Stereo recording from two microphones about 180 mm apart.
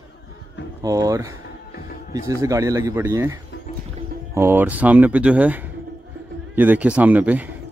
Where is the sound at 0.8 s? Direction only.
20° right (ahead or behind).